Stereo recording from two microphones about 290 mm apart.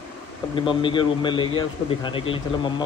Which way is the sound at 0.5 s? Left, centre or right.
Centre.